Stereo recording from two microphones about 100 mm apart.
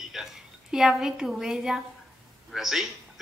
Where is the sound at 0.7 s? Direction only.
5° right (ahead or behind).